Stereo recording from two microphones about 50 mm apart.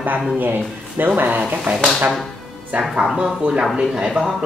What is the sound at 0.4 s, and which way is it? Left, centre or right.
A woman's voice, right.